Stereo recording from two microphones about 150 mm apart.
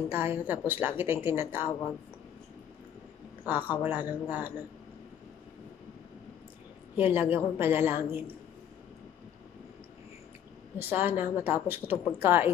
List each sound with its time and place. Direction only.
0.1 s a woman's voice: 15° right (ahead or behind)
3.4 s a woman's voice: 10° right (ahead or behind)
7.0 s a woman's voice: 15° right (ahead or behind)
10.8 s a woman's voice: 15° right (ahead or behind)